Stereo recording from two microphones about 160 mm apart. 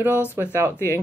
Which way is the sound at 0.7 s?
15° left (ahead or behind).